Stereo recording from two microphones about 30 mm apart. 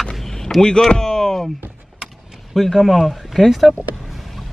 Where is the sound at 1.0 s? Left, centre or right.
Centre.